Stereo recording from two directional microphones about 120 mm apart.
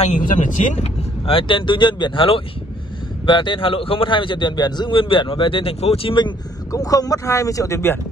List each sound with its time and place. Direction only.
0.0 s speech: 90° left
1.2 s a man's voice: 45° left (ahead or behind)
6.1 s speech: 35° left (ahead or behind)